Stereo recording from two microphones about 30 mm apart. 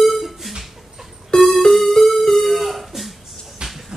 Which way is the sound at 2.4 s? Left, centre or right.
Centre.